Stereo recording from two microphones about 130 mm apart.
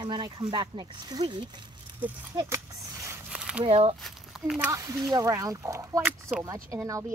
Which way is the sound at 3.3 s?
5° right (ahead or behind).